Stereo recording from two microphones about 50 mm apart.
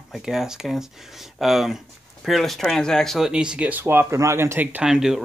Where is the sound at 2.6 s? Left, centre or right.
Centre.